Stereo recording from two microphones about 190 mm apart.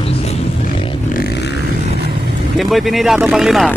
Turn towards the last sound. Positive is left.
turn(degrees=0)  # may be behind; listen again after turning